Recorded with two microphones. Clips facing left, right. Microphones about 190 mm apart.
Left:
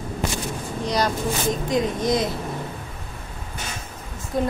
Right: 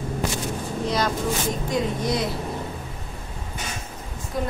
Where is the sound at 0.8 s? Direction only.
Centre (ahead or behind).